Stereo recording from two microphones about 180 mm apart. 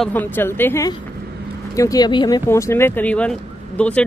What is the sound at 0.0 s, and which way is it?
Speech, 10° left (ahead or behind).